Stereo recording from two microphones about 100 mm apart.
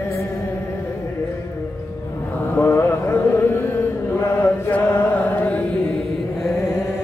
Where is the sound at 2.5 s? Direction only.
25° left (ahead or behind).